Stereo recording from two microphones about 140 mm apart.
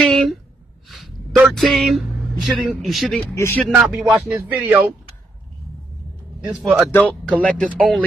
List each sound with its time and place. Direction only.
0.0 s a sound: 5° left (ahead or behind)
3.3 s speech: 15° left (ahead or behind)
3.7 s a man's voice: 5° right (ahead or behind)
6.5 s a man's voice: centre (ahead or behind)
6.9 s a man's voice: 10° left (ahead or behind)